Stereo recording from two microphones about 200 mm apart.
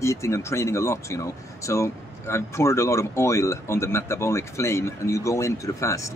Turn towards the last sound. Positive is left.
turn(degrees=15)  # may be behind; listen again after turning